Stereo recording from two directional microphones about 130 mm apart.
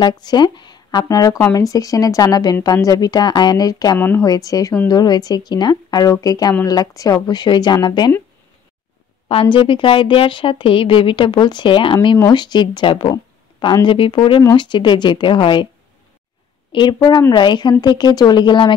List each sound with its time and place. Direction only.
0.0 s a woman's voice: 35° left (ahead or behind)
9.3 s a woman's voice: 40° left (ahead or behind)
16.7 s a woman's voice: 35° left (ahead or behind)